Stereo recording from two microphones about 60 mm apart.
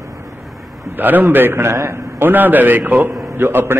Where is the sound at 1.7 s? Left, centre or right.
Right.